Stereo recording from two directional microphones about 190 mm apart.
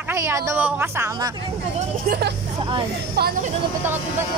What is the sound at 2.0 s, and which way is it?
Speech, 55° right (ahead or behind).